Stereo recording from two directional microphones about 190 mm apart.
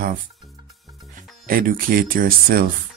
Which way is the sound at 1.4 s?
45° right (ahead or behind).